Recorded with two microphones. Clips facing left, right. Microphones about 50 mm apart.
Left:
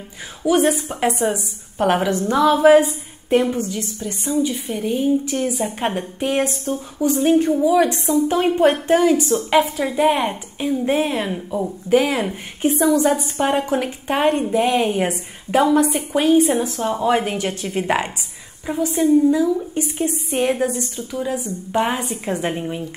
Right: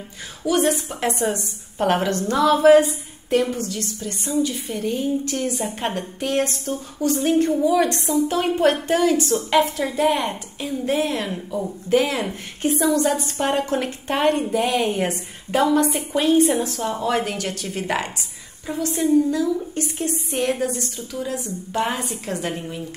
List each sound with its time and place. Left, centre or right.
0.5 s a woman's voice: centre
18.7 s a woman's voice: centre